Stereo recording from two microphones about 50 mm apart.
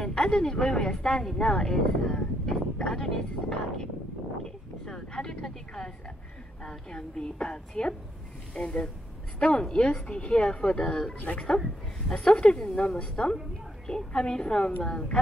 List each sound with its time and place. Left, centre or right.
0.0 s a woman's voice: centre